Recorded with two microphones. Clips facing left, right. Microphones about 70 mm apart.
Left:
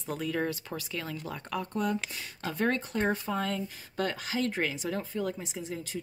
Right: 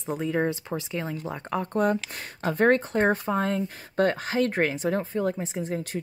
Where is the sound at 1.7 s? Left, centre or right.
Right.